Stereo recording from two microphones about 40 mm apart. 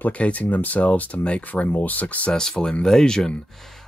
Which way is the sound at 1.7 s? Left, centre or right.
Left.